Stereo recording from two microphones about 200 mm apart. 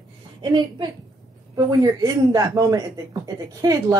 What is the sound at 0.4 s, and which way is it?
A woman's voice, 20° right (ahead or behind).